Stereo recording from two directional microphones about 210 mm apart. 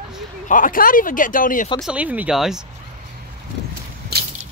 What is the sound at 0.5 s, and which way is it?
Speech, 40° left (ahead or behind).